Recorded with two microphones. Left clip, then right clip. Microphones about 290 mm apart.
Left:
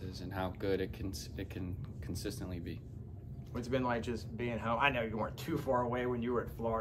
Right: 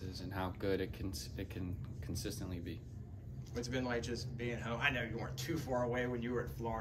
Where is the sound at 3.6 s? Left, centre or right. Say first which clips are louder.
Left 4 dB; centre.